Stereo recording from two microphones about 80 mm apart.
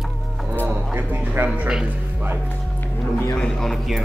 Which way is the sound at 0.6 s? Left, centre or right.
Right.